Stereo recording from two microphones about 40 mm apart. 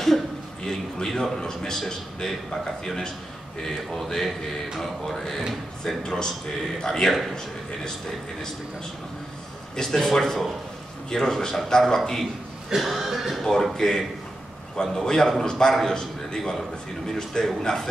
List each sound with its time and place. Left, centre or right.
0.7 s a man's voice: centre
9.8 s a man's voice: centre
12.6 s throat clearing: centre
13.4 s a man's voice: centre